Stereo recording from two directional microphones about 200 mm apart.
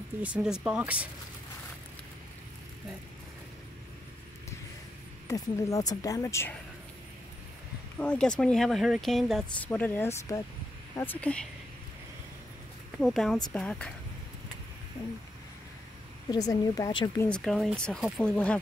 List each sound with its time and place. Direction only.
0.2 s speech: 5° right (ahead or behind)
5.3 s speech: 15° left (ahead or behind)
8.0 s speech: 5° left (ahead or behind)
13.0 s speech: centre (ahead or behind)
16.3 s speech: 20° left (ahead or behind)
17.3 s speech: centre (ahead or behind)